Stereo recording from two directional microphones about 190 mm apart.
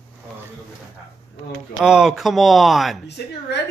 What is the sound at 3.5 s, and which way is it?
Speech, 65° left (ahead or behind).